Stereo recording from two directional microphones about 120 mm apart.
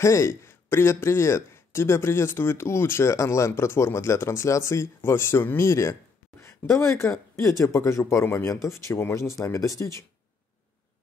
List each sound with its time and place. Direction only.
0.0 s speech: 25° left (ahead or behind)